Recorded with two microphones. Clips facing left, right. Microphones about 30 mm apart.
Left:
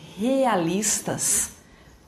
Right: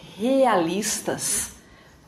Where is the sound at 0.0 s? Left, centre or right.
Centre.